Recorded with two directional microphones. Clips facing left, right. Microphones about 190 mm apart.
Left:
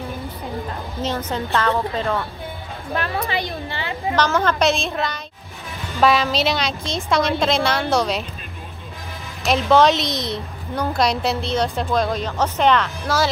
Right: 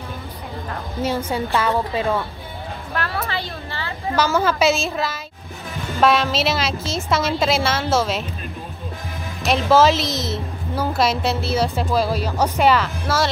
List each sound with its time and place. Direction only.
1.0 s a woman's voice: 10° right (ahead or behind)
2.9 s a woman's voice: 20° left (ahead or behind)
4.1 s a woman's voice: 5° right (ahead or behind)
9.4 s a woman's voice: centre (ahead or behind)